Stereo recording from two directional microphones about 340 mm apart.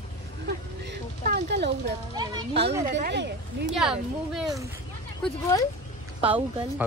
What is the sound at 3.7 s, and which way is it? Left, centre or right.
Speech, centre.